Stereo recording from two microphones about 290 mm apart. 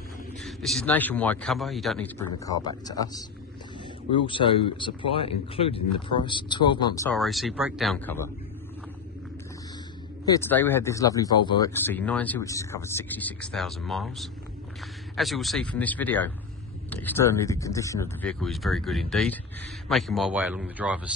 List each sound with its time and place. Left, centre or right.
0.4 s a man's voice: centre
10.2 s a man's voice: centre